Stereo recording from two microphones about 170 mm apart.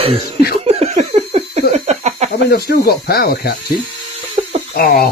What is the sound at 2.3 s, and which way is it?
Speech, 70° left (ahead or behind).